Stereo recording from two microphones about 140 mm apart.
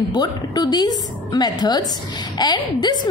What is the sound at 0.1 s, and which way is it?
A woman's voice, 30° left (ahead or behind).